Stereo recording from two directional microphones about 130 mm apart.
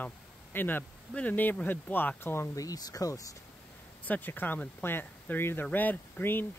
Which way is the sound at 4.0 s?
15° left (ahead or behind).